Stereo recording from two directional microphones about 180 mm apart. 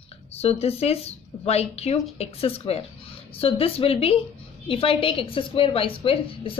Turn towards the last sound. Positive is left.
turn(degrees=30)  # may be behind; listen again after turning